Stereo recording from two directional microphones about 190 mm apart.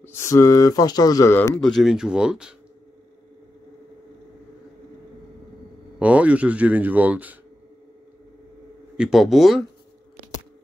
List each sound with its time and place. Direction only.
0.0 s speech: 15° left (ahead or behind)
1.6 s speech: centre (ahead or behind)
5.9 s speech: 5° right (ahead or behind)
8.9 s speech: 5° right (ahead or behind)